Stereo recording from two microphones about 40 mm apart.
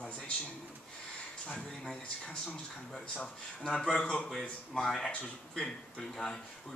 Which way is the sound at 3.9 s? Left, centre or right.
Left.